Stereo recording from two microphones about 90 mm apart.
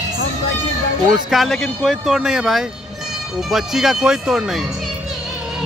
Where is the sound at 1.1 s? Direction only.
Centre (ahead or behind).